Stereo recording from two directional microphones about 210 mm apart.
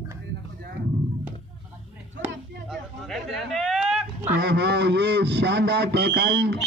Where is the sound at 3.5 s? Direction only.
Centre (ahead or behind).